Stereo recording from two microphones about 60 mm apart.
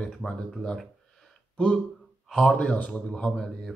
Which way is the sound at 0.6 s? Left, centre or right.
Centre.